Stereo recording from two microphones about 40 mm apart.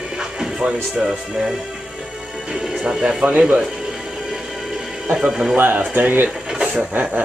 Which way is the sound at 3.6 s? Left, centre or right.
Centre.